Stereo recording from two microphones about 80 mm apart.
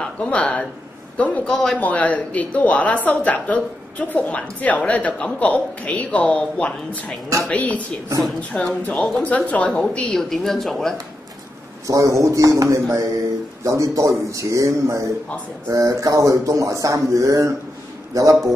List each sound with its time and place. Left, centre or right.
0.0 s a man's voice: centre
1.5 s speech: centre
1.8 s a woman's voice: centre
10.3 s speech: centre
11.9 s speech: right